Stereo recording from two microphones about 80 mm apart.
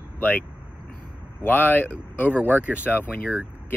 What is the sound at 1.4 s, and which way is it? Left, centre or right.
Speech, left.